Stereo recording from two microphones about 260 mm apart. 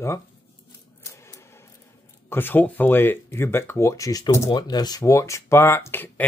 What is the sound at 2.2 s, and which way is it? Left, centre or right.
Speech, centre.